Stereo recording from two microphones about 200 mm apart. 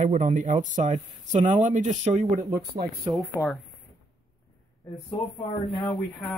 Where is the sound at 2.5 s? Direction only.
50° right (ahead or behind).